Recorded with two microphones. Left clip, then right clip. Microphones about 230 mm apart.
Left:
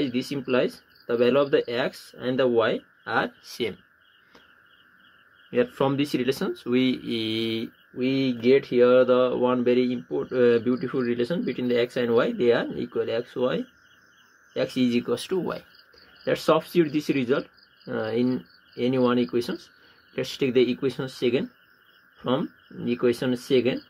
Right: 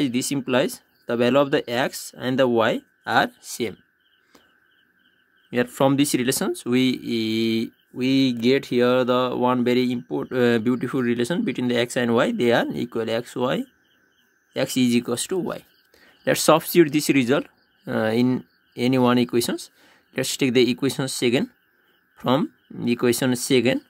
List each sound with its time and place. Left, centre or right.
0.0 s speech: right
5.5 s speech: right